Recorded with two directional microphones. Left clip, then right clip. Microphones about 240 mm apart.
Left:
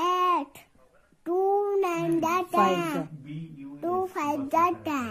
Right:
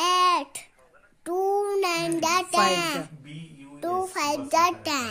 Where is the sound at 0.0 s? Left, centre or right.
Right.